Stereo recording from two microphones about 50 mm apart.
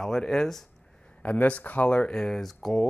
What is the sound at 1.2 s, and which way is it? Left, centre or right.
Speech, left.